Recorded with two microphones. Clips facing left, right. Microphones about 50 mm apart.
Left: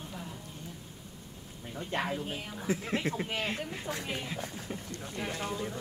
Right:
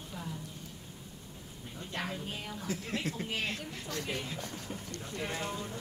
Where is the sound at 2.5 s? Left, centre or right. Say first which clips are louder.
Left 5 dB; left.